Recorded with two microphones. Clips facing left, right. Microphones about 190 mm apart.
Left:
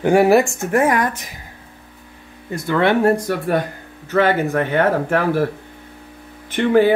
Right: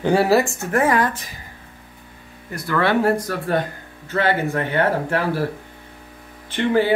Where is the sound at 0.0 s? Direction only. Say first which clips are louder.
Left 4 dB; 15° left (ahead or behind).